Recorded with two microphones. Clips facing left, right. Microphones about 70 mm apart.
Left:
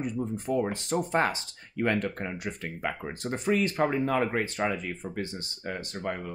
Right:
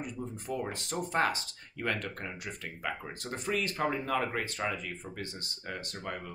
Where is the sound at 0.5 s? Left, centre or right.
Left.